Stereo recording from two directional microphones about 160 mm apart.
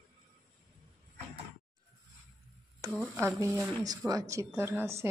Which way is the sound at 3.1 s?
15° right (ahead or behind).